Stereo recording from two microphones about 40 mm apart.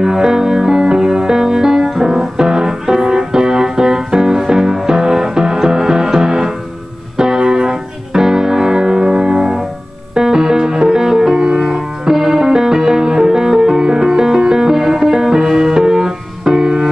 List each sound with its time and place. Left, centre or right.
0.0 s music: centre